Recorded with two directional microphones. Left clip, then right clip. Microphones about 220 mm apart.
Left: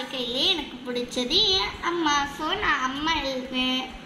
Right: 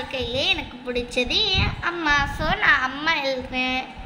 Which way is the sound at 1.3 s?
70° right (ahead or behind).